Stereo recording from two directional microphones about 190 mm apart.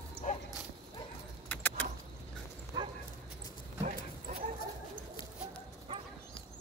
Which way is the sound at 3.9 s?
35° right (ahead or behind).